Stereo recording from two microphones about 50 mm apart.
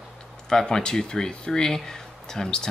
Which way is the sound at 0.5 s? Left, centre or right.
Centre.